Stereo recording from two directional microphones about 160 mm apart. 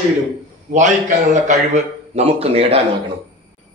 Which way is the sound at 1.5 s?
45° right (ahead or behind).